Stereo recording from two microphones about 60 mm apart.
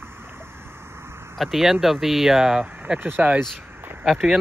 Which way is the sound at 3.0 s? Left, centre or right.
Right.